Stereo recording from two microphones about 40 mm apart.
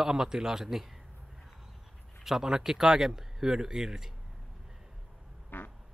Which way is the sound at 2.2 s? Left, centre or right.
Centre.